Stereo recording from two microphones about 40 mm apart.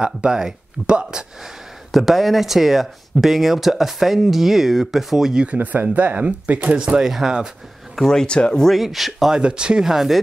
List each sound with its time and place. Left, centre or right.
0.0 s speech: right
1.9 s speech: centre
5.3 s speech: right
5.6 s speech: right
6.8 s speech: centre
7.1 s speech: centre
8.1 s speech: centre
8.7 s speech: centre
9.3 s speech: right
9.8 s speech: centre